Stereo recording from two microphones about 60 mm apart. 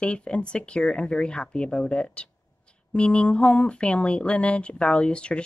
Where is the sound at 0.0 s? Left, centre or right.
Centre.